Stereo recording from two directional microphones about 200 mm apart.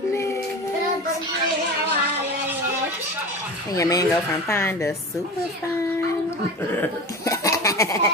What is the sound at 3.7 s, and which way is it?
A woman's voice, 15° left (ahead or behind).